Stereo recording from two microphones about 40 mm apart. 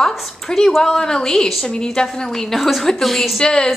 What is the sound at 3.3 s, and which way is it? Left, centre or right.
Speech, centre.